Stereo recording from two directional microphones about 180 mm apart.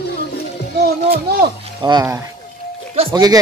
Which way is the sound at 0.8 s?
60° right (ahead or behind).